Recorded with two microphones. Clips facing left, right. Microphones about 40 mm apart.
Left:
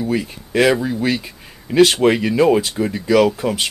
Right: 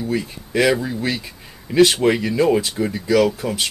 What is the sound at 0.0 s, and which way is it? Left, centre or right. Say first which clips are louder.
Speech: left 2 dB; centre.